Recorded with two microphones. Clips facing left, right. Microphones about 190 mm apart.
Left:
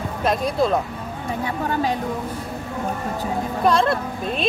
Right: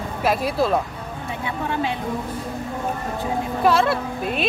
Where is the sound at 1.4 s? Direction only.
40° left (ahead or behind).